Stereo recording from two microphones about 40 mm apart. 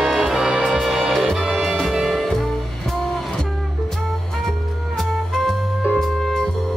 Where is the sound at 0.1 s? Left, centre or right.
Centre.